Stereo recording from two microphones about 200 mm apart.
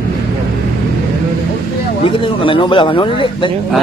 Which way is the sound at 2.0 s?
25° left (ahead or behind).